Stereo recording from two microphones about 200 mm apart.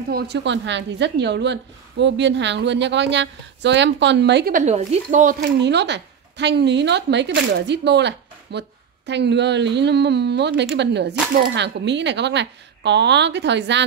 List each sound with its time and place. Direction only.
0.1 s a woman's voice: 60° right (ahead or behind); by 5.4 s 40° right (ahead or behind)
5.6 s a woman's voice: 60° right (ahead or behind)